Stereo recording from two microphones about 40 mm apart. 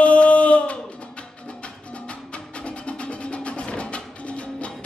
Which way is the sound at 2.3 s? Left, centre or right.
Left.